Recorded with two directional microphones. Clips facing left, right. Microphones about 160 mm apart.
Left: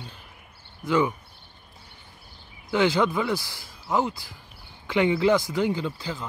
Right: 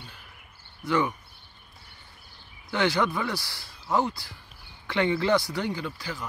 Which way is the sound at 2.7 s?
15° left (ahead or behind).